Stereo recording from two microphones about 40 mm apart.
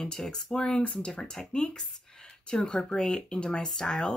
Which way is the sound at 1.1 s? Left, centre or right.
Centre.